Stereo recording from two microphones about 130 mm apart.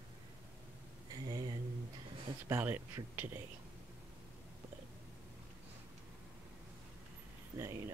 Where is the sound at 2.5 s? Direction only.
15° right (ahead or behind).